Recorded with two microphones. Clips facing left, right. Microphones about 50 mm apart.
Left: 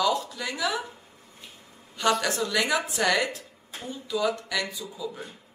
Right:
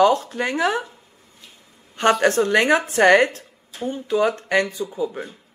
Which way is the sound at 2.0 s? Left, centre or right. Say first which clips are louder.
Right 8 dB; right.